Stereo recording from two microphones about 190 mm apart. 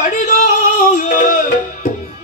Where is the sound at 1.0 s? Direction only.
40° left (ahead or behind).